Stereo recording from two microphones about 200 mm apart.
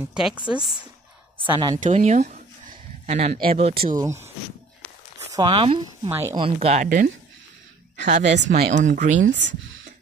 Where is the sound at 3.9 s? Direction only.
15° right (ahead or behind).